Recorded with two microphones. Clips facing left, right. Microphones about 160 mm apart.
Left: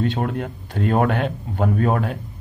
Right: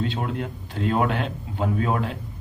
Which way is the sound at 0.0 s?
50° left (ahead or behind).